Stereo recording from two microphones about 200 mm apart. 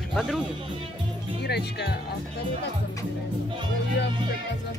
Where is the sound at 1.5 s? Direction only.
55° left (ahead or behind).